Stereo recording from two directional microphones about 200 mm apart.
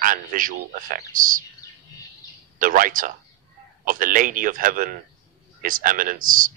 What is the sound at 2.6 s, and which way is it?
Speech, 45° right (ahead or behind).